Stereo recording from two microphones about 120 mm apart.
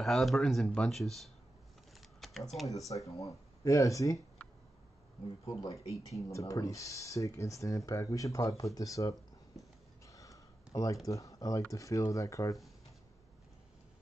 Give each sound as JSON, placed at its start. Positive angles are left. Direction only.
{"t": 0.0, "sound": "speech", "side_deg": 0}
{"t": 2.0, "sound": "typing", "side_deg": 0}
{"t": 2.9, "sound": "speech", "side_deg": 25}
{"t": 5.4, "sound": "speech", "side_deg": 30}
{"t": 10.0, "sound": "a sound", "side_deg": 25}
{"t": 11.1, "sound": "speech", "side_deg": 25}